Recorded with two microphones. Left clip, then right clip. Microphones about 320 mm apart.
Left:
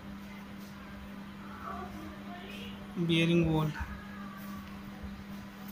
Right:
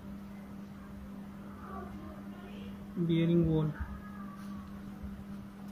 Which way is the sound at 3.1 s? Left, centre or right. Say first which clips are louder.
Left 3 dB; left.